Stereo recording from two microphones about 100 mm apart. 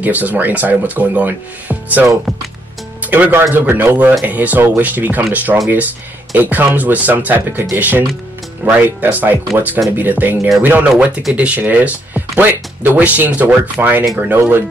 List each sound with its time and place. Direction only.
0.0 s speech: 15° right (ahead or behind)